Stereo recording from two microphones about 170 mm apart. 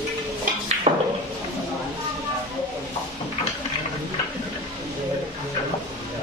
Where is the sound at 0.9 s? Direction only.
40° right (ahead or behind).